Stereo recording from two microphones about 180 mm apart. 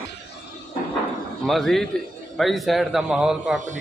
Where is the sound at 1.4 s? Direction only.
Centre (ahead or behind).